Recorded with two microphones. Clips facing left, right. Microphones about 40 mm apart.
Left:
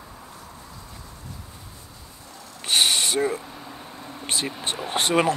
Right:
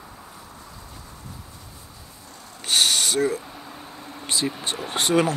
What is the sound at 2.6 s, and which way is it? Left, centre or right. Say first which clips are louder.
Vehicle: even; centre.